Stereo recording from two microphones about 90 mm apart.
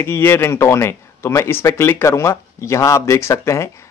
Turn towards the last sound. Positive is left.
turn(degrees=35)  # may be behind; listen again after turning